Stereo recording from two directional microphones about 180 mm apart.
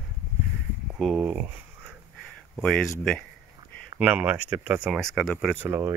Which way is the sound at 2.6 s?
5° left (ahead or behind).